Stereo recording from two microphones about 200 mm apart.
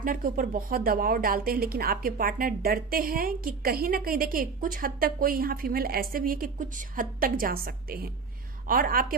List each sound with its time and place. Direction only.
0.0 s speech: 45° right (ahead or behind)